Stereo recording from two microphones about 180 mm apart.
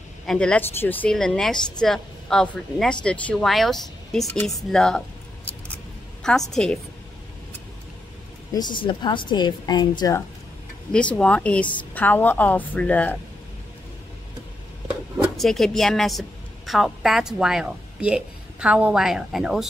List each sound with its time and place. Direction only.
0.3 s speech: 5° left (ahead or behind)
6.5 s speech: 5° left (ahead or behind)
8.5 s a woman's voice: 25° left (ahead or behind)
10.9 s a woman's voice: 5° left (ahead or behind)
14.9 s speech: centre (ahead or behind)